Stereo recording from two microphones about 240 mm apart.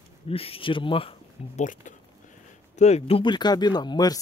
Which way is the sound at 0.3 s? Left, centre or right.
Left.